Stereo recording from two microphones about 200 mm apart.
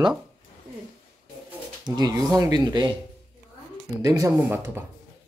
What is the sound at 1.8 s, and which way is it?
Speech, 20° right (ahead or behind).